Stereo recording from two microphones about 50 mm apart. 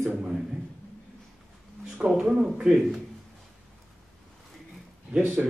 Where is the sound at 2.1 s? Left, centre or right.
Centre.